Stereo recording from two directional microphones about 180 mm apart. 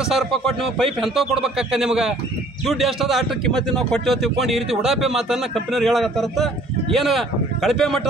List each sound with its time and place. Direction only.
0.1 s a man's voice: centre (ahead or behind)